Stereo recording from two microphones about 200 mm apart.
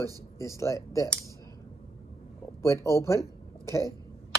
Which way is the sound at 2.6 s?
15° left (ahead or behind).